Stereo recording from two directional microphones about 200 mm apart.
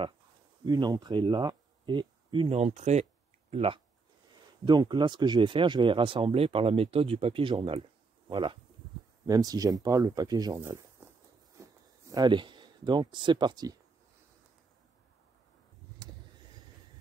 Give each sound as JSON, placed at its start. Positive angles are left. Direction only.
{"t": 0.7, "sound": "speech", "side_deg": -20}
{"t": 11.0, "sound": "a sound", "side_deg": -10}
{"t": 12.1, "sound": "speech", "side_deg": -20}